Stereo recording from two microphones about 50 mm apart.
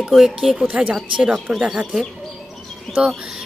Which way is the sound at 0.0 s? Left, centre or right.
Centre.